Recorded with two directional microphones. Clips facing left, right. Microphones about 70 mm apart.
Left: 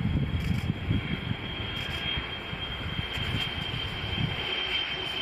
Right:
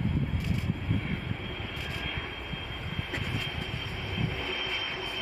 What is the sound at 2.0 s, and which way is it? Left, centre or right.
Vehicle, centre.